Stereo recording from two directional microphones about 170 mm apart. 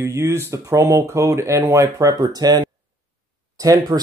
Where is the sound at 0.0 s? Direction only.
15° right (ahead or behind).